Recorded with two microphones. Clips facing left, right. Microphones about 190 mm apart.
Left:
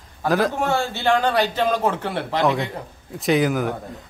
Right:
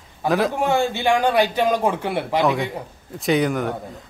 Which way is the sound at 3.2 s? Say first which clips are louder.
Even; centre (ahead or behind).